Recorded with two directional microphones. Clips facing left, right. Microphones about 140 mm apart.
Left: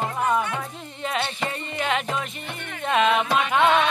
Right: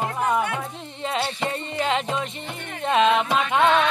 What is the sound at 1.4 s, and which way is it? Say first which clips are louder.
Music: right 2 dB; 25° right (ahead or behind).